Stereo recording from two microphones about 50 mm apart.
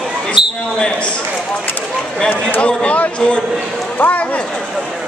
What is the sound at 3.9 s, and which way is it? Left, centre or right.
Speech, left.